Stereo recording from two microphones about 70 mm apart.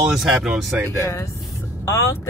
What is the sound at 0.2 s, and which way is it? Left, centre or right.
Speech, centre.